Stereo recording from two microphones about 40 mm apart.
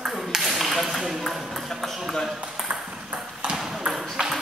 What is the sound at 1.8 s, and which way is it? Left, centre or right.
Ping, centre.